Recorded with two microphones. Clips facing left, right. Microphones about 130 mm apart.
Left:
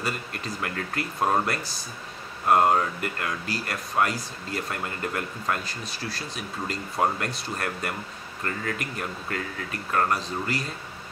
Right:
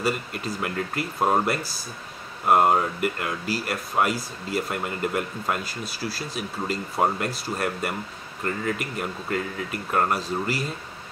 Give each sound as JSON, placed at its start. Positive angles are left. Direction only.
{"t": 0.0, "sound": "speech", "side_deg": -5}